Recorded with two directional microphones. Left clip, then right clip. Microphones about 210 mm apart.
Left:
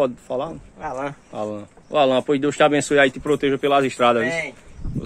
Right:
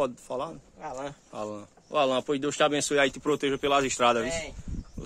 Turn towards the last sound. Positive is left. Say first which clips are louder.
# left 7 dB
turn(degrees=-15)  # may be behind; listen again after turning